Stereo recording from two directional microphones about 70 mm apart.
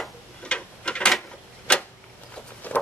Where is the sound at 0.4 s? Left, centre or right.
Centre.